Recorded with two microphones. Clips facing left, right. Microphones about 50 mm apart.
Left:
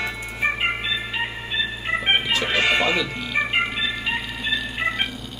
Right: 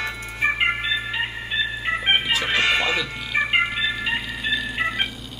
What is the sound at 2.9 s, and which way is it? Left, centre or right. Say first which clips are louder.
Music: left 1 dB; centre.